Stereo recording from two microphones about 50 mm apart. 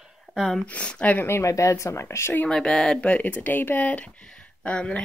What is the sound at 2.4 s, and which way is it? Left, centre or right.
Speech, centre.